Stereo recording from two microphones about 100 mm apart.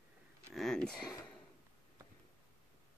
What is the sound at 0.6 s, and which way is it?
Speech, 5° left (ahead or behind).